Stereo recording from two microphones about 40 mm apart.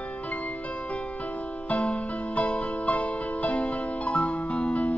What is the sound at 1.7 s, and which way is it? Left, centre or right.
Music, left.